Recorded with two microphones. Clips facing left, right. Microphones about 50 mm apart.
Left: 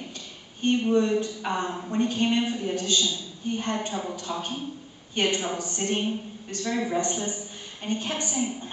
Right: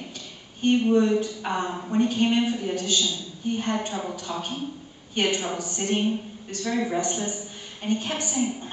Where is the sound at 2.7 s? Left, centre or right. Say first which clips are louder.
Even; centre.